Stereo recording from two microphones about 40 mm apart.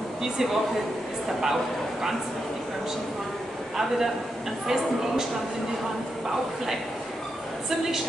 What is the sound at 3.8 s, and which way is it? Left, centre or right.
Speech, centre.